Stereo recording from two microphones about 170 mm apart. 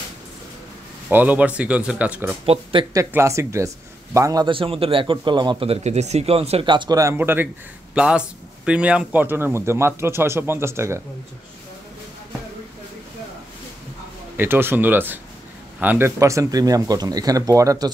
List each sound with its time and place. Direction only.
1.1 s a man's voice: 10° right (ahead or behind)
2.4 s a man's voice: 30° right (ahead or behind); by 11.0 s 15° right (ahead or behind)
14.3 s a man's voice: 10° right (ahead or behind)